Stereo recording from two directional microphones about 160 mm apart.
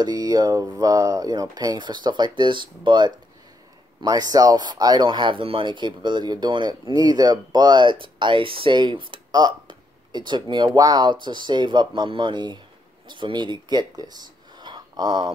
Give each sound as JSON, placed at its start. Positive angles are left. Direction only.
{"t": 0.0, "sound": "speech", "side_deg": -25}